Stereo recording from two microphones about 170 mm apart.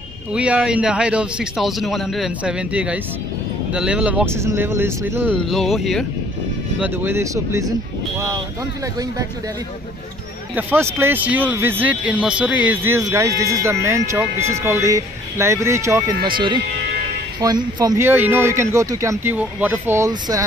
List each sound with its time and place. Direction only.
0.3 s a man's voice: 5° right (ahead or behind)
5.3 s a man's voice: 5° left (ahead or behind)
6.8 s a man's voice: 10° right (ahead or behind)
10.5 s a man's voice: 10° right (ahead or behind)